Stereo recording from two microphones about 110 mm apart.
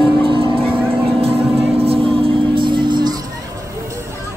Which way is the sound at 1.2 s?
60° right (ahead or behind).